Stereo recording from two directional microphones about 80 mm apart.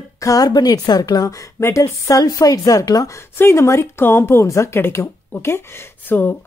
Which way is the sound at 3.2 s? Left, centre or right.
Left.